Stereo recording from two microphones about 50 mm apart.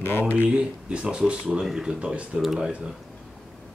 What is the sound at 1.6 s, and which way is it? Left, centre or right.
Speech, centre.